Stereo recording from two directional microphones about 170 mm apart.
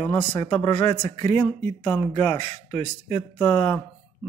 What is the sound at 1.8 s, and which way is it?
Speech, 10° left (ahead or behind).